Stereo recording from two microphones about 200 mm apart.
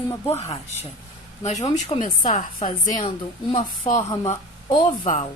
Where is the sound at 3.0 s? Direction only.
25° left (ahead or behind).